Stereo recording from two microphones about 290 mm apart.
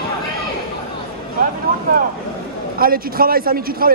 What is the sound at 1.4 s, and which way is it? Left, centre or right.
A man's voice, right.